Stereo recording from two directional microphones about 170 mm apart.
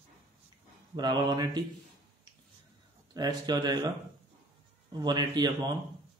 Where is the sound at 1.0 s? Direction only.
25° right (ahead or behind).